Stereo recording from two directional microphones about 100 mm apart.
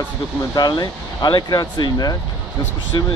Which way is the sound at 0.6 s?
40° left (ahead or behind).